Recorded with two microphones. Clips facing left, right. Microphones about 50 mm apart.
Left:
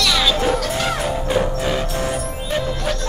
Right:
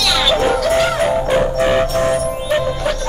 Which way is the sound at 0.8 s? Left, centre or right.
Centre.